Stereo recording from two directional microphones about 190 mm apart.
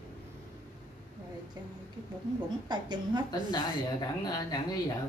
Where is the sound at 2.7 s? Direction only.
25° right (ahead or behind).